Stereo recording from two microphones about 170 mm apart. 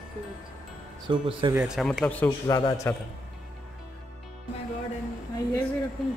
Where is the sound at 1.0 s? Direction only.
30° right (ahead or behind).